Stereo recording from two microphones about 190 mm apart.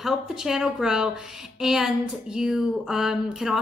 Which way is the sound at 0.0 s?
Centre (ahead or behind).